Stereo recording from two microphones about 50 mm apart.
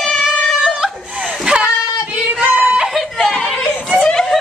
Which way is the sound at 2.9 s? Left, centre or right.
Centre.